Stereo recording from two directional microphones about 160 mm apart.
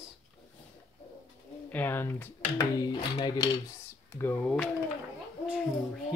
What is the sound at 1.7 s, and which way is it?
Speech, 10° left (ahead or behind).